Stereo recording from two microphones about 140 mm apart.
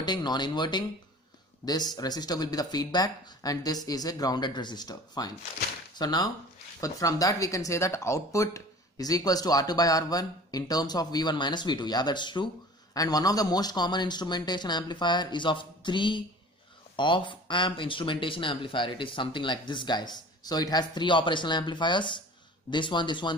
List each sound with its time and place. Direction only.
0.0 s speech: 30° left (ahead or behind)